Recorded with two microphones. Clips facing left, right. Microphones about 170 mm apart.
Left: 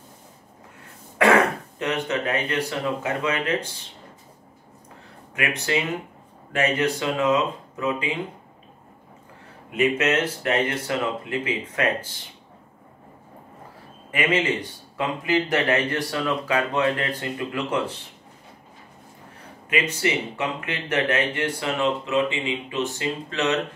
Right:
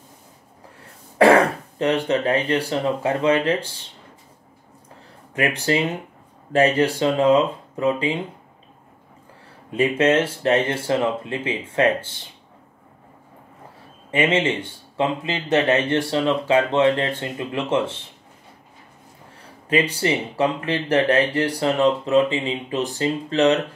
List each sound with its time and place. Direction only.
1.1 s speech: 35° right (ahead or behind)
5.3 s speech: 35° right (ahead or behind)
9.7 s speech: 30° right (ahead or behind)
14.1 s speech: 25° right (ahead or behind)
19.7 s speech: 35° right (ahead or behind)